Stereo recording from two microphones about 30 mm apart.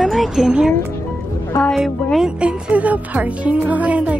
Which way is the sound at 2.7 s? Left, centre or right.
Right.